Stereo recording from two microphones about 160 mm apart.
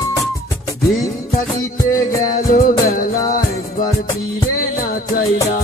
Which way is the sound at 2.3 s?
60° left (ahead or behind).